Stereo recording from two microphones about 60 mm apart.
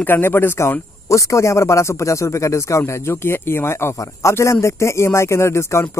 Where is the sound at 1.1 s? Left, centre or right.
Left.